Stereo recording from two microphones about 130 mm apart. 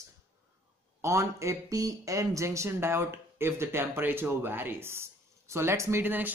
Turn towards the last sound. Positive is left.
turn(degrees=-15)  # may be behind; listen again after turning